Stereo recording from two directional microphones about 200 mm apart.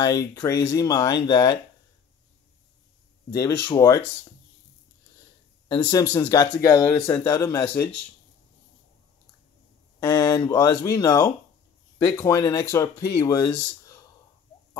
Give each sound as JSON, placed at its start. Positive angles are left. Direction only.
{"t": 0.0, "sound": "speech", "side_deg": 20}
{"t": 3.3, "sound": "speech", "side_deg": 15}
{"t": 5.7, "sound": "speech", "side_deg": 15}
{"t": 9.9, "sound": "speech", "side_deg": 15}